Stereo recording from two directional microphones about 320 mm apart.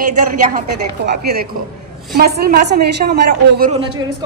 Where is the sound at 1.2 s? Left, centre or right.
Right.